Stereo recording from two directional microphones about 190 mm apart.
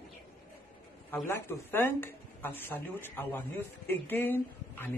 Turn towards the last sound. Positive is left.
turn(degrees=10)  # may be behind; listen again after turning